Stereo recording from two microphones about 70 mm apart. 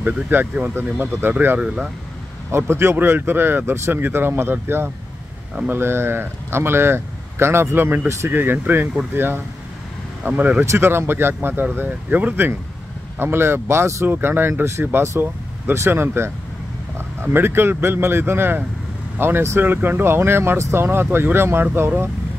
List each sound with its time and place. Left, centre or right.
0.0 s speech: right
2.5 s speech: right
10.6 s speech: right
13.2 s speech: right
14.0 s speech: right